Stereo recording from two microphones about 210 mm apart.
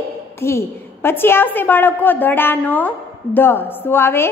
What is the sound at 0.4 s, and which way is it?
A woman's voice, 10° left (ahead or behind).